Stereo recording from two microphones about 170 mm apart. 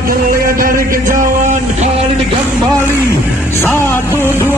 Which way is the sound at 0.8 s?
55° right (ahead or behind).